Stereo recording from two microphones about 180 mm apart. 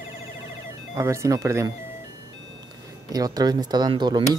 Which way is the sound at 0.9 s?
15° right (ahead or behind).